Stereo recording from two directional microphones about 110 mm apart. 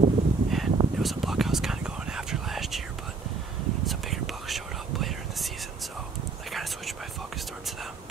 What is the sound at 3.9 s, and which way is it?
Whispering, centre (ahead or behind).